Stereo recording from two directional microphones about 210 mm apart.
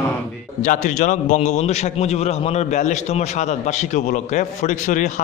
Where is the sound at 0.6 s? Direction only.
35° left (ahead or behind).